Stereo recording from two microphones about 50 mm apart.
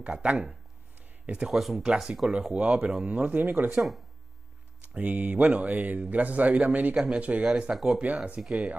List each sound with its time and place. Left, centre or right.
0.2 s speech: right
1.5 s speech: centre
2.5 s a man's voice: right
3.7 s speech: centre
4.8 s a man's voice: right; by 7.7 s centre
7.7 s speech: centre
8.0 s speech: right
8.4 s speech: centre